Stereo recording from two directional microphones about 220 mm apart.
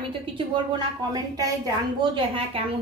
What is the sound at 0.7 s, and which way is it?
A woman's voice, 15° right (ahead or behind).